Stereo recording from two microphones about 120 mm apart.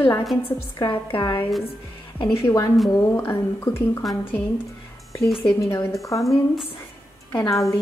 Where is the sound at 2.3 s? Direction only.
20° left (ahead or behind).